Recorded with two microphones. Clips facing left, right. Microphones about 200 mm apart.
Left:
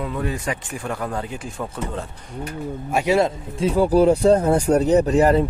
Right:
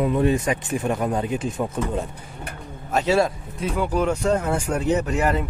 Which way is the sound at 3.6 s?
35° left (ahead or behind).